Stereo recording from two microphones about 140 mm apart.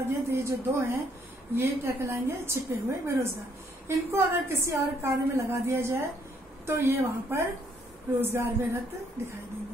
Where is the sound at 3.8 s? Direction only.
15° right (ahead or behind).